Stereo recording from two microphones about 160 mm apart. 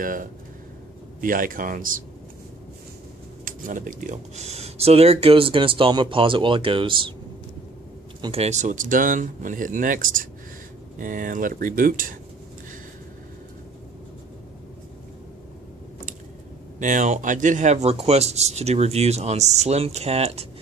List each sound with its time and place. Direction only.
0.0 s speech: 55° right (ahead or behind)
3.4 s speech: 55° right (ahead or behind); by 7.2 s 30° right (ahead or behind)
8.2 s speech: 40° right (ahead or behind); by 12.2 s 60° right (ahead or behind)
16.8 s speech: 50° right (ahead or behind)